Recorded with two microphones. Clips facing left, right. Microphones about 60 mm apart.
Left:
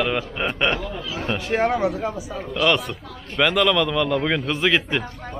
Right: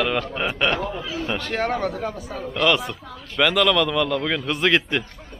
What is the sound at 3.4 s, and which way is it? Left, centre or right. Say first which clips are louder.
A man's voice: even; centre.